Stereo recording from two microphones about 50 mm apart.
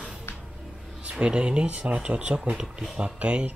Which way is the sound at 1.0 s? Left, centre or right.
Centre.